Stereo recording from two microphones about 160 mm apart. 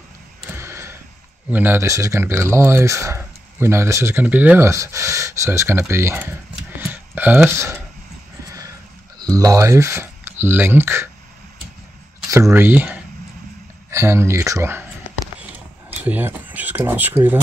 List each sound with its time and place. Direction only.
0.5 s a sound: 15° right (ahead or behind)
1.5 s speech: 10° right (ahead or behind)
8.5 s a sound: 20° right (ahead or behind)
9.2 s speech: 20° right (ahead or behind)
12.3 s speech: 20° right (ahead or behind)
13.8 s speech: 15° right (ahead or behind)
15.9 s speech: 10° right (ahead or behind)